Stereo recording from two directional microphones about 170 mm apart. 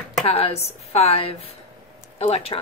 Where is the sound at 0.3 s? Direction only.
35° left (ahead or behind).